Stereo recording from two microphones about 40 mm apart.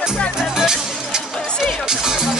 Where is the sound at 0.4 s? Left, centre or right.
Centre.